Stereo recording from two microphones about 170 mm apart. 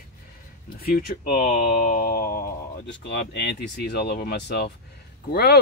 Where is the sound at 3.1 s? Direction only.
90° left.